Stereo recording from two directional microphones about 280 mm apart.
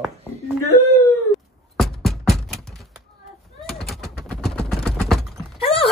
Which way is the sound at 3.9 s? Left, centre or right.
Centre.